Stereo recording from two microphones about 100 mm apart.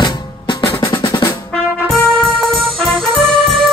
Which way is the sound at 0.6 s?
35° left (ahead or behind).